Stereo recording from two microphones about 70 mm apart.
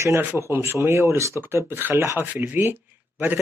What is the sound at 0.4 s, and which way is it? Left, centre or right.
Speech, right.